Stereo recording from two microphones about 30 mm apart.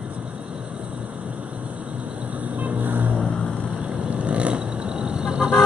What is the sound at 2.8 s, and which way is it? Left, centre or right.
Vehicle, right.